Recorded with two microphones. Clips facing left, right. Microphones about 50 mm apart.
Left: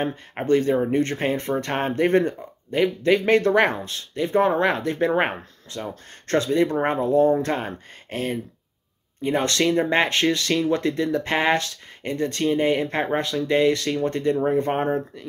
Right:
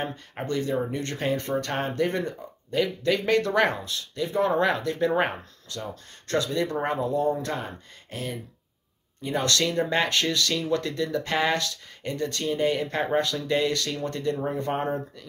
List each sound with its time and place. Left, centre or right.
0.0 s speech: left
1.9 s speech: left
2.7 s speech: left
9.2 s speech: left